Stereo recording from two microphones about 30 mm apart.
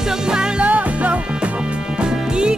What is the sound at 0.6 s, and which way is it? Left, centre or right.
Music, right.